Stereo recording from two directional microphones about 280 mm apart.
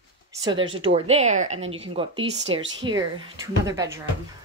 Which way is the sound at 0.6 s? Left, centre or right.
Centre.